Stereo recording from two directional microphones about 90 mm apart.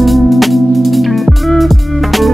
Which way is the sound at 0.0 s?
Centre (ahead or behind).